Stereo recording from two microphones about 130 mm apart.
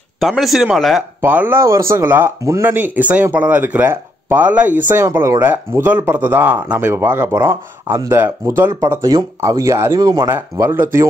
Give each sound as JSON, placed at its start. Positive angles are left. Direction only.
{"t": 0.2, "sound": "speech", "side_deg": 0}
{"t": 1.2, "sound": "speech", "side_deg": -15}
{"t": 10.3, "sound": "speech", "side_deg": -15}